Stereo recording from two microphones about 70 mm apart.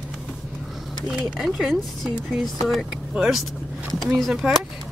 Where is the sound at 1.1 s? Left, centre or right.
Centre.